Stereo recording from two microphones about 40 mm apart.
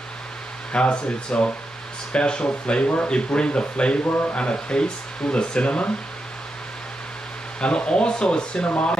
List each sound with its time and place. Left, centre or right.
0.7 s speech: left
4.0 s speech: left
4.4 s speech: left
7.6 s speech: left
8.6 s speech: left